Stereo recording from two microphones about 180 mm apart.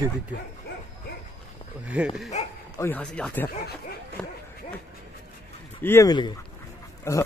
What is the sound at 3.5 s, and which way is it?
Speech, 60° left (ahead or behind).